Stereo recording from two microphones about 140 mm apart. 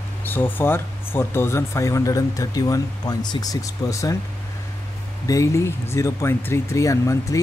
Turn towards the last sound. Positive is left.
turn(degrees=25)  # may be behind; listen again after turning